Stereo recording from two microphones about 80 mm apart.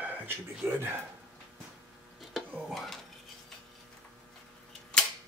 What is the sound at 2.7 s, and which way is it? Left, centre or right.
Dishes, centre.